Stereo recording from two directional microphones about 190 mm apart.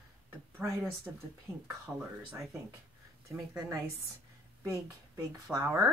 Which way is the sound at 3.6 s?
15° right (ahead or behind).